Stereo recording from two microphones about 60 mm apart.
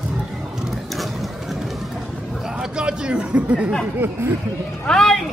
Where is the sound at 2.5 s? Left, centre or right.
Centre.